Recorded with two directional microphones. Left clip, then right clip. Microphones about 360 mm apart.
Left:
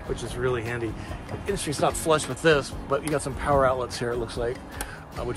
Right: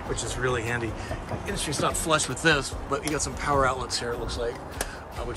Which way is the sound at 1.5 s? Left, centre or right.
Centre.